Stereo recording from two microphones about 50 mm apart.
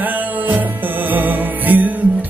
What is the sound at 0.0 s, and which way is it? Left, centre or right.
Music, right.